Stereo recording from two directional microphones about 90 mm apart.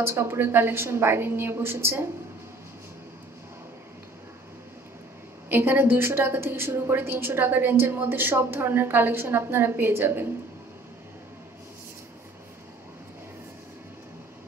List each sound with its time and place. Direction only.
0.0 s a woman's voice: 25° right (ahead or behind)
5.5 s a woman's voice: 25° right (ahead or behind)